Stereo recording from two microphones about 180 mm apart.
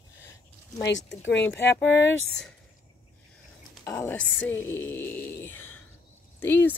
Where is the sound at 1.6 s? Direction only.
80° left.